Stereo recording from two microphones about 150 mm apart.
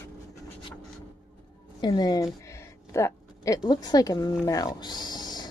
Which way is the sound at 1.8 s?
30° left (ahead or behind).